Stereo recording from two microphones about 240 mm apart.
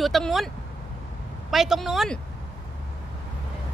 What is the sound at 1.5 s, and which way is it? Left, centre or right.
Speech, centre.